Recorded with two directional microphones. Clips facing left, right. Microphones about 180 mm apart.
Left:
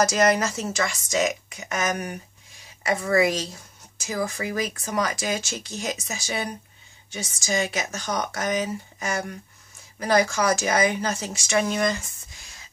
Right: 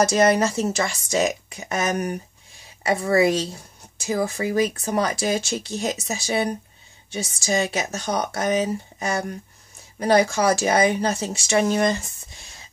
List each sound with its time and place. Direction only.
0.0 s speech: 25° right (ahead or behind)